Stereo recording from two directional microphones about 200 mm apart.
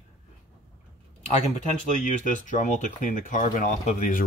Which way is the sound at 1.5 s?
40° left (ahead or behind).